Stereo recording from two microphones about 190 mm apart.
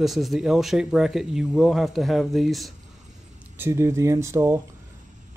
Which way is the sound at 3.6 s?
15° right (ahead or behind).